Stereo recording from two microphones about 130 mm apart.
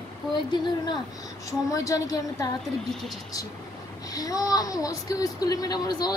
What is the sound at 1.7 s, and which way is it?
Speech, 25° left (ahead or behind).